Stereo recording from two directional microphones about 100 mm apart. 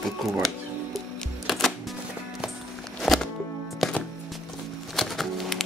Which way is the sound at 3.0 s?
Centre (ahead or behind).